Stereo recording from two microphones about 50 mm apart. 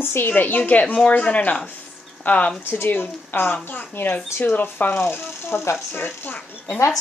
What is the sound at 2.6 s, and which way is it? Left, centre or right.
Speech, left.